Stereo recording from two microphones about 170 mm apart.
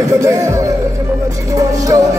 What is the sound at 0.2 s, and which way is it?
Music, 20° right (ahead or behind).